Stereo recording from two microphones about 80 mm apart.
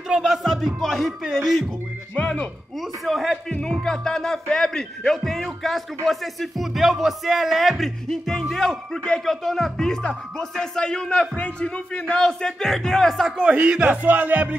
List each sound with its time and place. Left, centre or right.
0.1 s speech: centre
2.1 s speech: centre
3.1 s speech: centre
13.4 s speech: centre
14.0 s music: right